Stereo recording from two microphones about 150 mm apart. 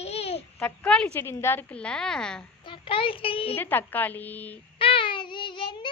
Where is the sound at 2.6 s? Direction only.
35° left (ahead or behind).